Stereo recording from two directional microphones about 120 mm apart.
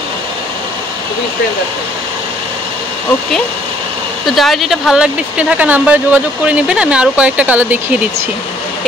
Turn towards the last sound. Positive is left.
turn(degrees=-15)  # may be behind; listen again after turning